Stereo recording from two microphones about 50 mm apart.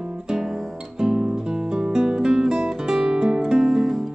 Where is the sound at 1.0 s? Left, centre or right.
Centre.